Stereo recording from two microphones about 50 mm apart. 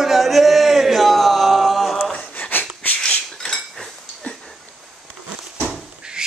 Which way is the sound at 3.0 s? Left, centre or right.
Centre.